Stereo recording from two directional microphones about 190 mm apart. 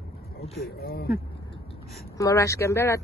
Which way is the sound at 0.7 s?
55° left (ahead or behind).